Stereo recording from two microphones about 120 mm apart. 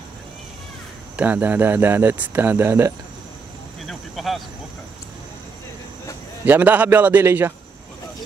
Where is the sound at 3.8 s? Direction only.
Centre (ahead or behind).